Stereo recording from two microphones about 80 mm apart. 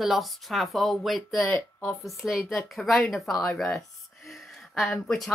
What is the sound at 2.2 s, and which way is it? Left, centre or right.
Speech, centre.